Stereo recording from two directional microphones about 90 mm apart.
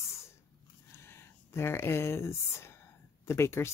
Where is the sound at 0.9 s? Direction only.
30° left (ahead or behind).